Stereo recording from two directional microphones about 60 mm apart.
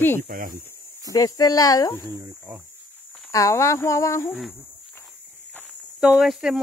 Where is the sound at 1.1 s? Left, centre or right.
Left.